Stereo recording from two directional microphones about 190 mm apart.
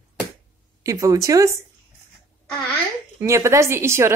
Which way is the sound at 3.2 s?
15° right (ahead or behind).